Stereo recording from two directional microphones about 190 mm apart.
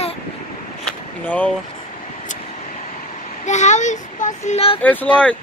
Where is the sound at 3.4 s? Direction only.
40° left (ahead or behind).